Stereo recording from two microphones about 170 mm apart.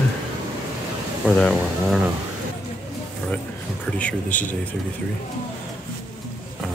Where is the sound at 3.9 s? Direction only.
10° left (ahead or behind).